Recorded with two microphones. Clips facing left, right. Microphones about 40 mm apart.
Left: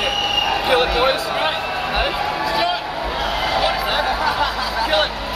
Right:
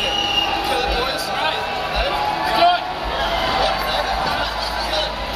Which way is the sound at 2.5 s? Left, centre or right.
Centre.